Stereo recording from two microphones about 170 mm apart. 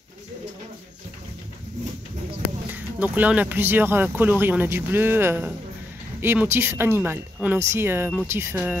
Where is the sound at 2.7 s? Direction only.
10° right (ahead or behind).